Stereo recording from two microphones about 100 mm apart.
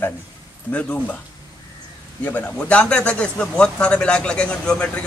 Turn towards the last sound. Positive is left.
turn(degrees=10)  # may be behind; listen again after turning